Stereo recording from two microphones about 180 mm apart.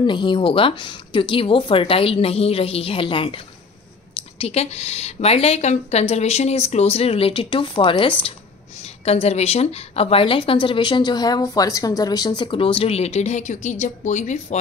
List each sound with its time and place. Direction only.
0.0 s speech: 25° left (ahead or behind)